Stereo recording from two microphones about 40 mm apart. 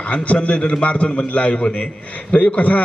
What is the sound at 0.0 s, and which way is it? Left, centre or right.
A man's voice, left.